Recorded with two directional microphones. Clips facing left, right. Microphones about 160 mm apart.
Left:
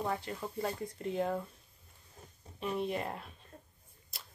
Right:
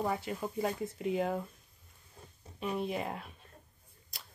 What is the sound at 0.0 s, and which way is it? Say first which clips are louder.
Speech: right 2 dB; 10° right (ahead or behind).